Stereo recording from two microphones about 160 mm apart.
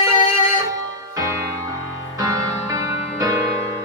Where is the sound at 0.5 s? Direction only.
20° right (ahead or behind).